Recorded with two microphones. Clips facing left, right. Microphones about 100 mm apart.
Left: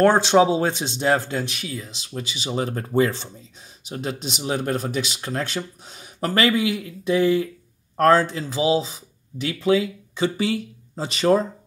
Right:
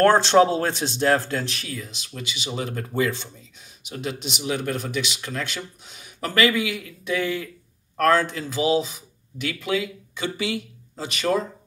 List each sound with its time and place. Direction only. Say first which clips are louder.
0.0 s speech: even; 10° left (ahead or behind)
1.8 s speech: left 3 dB; 30° left (ahead or behind)